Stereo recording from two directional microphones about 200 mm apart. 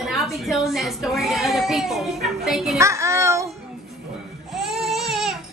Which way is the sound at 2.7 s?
15° right (ahead or behind).